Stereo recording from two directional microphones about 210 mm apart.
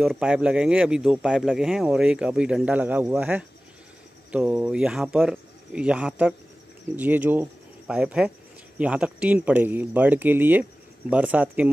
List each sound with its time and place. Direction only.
0.0 s speech: centre (ahead or behind)